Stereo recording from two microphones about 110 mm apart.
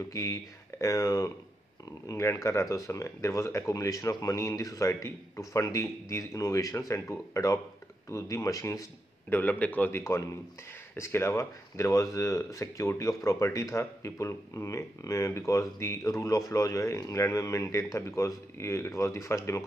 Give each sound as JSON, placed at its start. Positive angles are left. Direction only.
{"t": 0.1, "sound": "speech", "side_deg": 30}
{"t": 9.3, "sound": "a man's voice", "side_deg": 15}